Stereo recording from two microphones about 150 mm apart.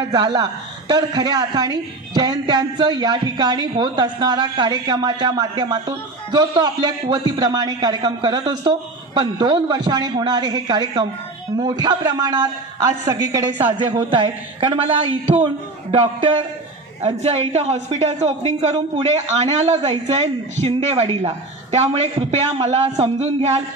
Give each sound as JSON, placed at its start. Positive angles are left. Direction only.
{"t": 0.1, "sound": "a man's voice", "side_deg": -25}